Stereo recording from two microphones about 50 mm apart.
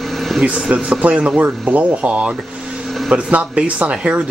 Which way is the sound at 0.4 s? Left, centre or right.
Centre.